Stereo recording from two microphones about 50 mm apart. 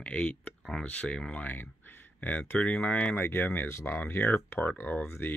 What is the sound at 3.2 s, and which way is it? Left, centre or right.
Speech, left.